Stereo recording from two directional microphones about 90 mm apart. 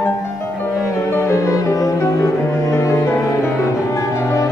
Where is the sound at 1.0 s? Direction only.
30° left (ahead or behind).